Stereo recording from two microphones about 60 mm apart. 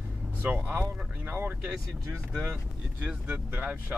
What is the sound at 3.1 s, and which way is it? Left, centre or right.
Speech, right.